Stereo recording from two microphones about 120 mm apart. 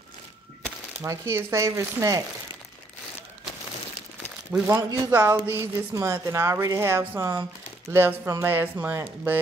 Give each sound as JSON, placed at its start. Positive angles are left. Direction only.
{"t": 1.0, "sound": "a woman's voice", "side_deg": -25}
{"t": 4.5, "sound": "a woman's voice", "side_deg": -20}